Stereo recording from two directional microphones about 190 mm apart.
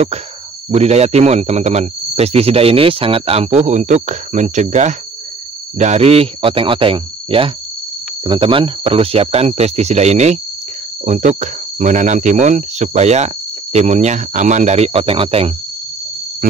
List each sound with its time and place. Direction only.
0.7 s speech: 35° right (ahead or behind)